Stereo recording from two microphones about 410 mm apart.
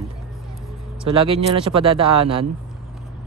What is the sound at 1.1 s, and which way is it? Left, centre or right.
Speech, centre.